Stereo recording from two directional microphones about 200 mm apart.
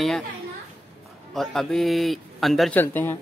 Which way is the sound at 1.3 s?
Centre (ahead or behind).